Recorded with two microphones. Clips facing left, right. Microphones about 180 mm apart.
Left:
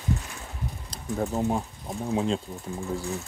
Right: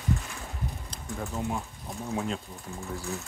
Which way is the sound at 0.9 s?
40° left (ahead or behind).